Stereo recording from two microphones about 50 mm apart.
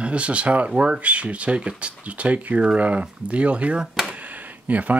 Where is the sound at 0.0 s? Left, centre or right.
Right.